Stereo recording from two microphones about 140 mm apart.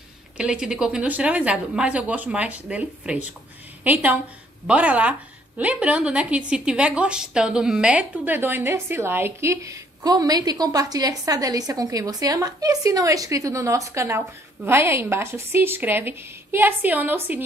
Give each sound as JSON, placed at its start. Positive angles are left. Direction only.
{"t": 0.4, "sound": "a woman's voice", "side_deg": -5}